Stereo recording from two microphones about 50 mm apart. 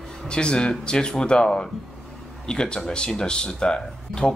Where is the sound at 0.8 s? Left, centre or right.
Centre.